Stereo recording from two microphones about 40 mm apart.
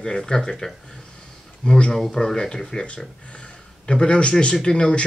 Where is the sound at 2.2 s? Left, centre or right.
Centre.